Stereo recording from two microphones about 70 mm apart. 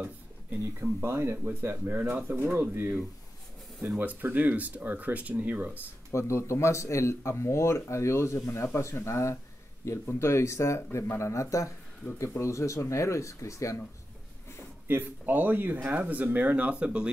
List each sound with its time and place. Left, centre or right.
0.7 s speech: right
4.0 s speech: right
6.1 s speech: left
14.9 s speech: right